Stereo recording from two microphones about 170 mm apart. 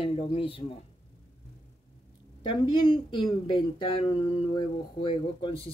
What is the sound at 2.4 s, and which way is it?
Speech, 25° left (ahead or behind).